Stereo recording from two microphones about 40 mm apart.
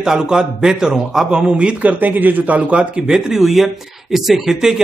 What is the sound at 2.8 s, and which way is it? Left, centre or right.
A man's voice, centre.